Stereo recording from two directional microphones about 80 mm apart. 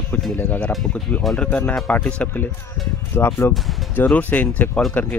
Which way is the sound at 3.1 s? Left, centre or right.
Left.